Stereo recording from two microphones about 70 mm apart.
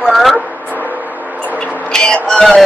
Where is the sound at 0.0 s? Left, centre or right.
Centre.